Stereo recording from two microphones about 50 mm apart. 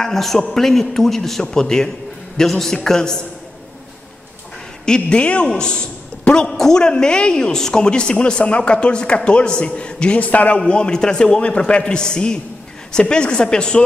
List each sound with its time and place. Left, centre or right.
0.0 s a man's voice: centre
4.8 s a man's voice: centre
10.7 s a man's voice: centre